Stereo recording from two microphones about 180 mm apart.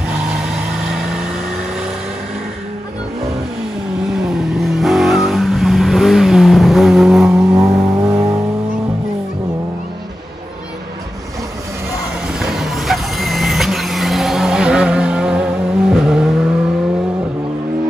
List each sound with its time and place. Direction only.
0.5 s vehicle: 5° right (ahead or behind)
4.1 s vehicle: 5° right (ahead or behind)
7.5 s vehicle: 15° right (ahead or behind)
12.4 s vehicle: centre (ahead or behind)